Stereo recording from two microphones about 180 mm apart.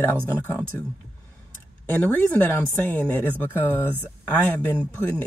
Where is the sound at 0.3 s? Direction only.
10° left (ahead or behind).